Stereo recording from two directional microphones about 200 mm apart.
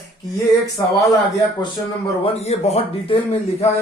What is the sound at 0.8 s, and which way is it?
Speech, 15° left (ahead or behind).